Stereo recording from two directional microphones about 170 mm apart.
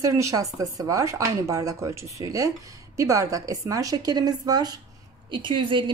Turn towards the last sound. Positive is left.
turn(degrees=-30)  # may be behind; listen again after turning